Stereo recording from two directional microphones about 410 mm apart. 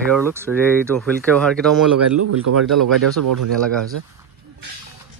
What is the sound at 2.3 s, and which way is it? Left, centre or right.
Speech, right.